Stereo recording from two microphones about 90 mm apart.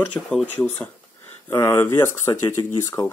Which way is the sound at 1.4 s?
30° left (ahead or behind).